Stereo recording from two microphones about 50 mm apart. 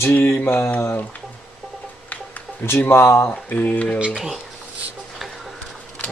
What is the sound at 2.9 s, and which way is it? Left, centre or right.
Speech, left.